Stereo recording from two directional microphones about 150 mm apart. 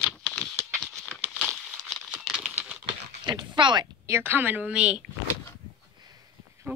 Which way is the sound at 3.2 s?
30° right (ahead or behind).